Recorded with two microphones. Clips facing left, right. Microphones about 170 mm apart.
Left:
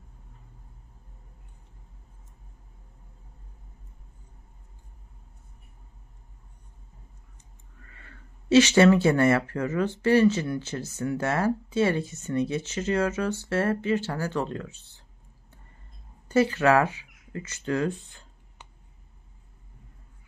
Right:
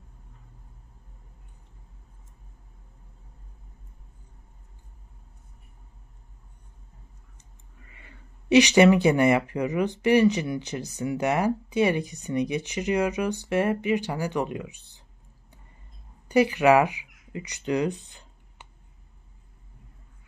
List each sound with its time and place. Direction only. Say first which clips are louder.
7.8 s speech: even; 15° right (ahead or behind)
16.3 s speech: right 2 dB; 15° right (ahead or behind)